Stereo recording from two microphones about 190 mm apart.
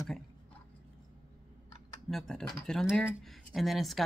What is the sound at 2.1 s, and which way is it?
Speech, centre (ahead or behind).